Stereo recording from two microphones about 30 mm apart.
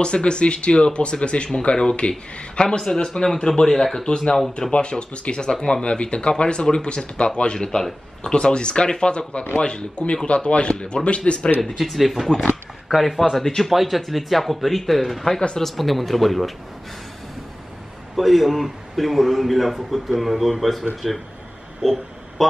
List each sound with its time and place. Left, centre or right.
0.0 s speech: left
7.5 s speech: left
11.8 s a man's voice: centre
18.1 s a man's voice: centre
21.8 s speech: centre
22.4 s a man's voice: centre